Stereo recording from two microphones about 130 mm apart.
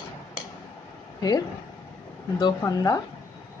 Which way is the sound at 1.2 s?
30° left (ahead or behind).